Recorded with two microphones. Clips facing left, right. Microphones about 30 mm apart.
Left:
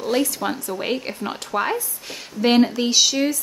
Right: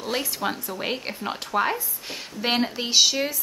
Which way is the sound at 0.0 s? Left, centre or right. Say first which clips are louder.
Left 5 dB; centre.